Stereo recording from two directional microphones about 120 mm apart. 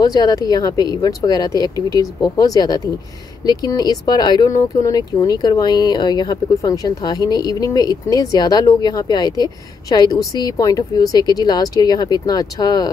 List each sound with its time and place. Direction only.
0.0 s speech: 30° left (ahead or behind)